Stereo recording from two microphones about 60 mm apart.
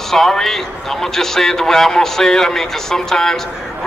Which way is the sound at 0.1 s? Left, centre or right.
Centre.